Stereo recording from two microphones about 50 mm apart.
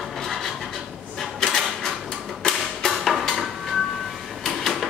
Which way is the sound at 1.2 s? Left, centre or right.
Centre.